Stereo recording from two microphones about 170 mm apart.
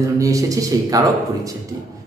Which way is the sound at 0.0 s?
20° right (ahead or behind).